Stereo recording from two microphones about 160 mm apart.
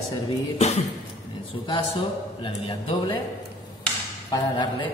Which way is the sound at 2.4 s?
30° left (ahead or behind).